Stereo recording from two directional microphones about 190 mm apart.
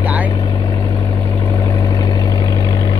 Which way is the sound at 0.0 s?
10° right (ahead or behind).